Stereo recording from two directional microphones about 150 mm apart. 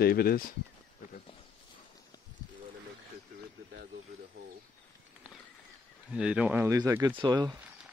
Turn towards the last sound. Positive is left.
turn(degrees=-30)  # may be behind; listen again after turning